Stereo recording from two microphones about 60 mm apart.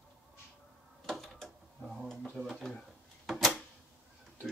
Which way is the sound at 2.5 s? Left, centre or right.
Centre.